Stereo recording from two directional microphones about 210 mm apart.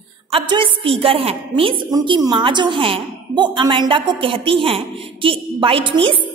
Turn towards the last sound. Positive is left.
turn(degrees=-25)  # may be behind; listen again after turning